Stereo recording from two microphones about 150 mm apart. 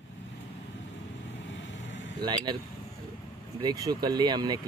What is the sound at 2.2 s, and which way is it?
Speech, 30° right (ahead or behind).